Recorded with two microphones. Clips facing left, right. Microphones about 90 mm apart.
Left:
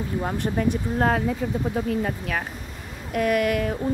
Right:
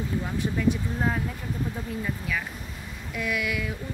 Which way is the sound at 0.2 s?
45° left (ahead or behind).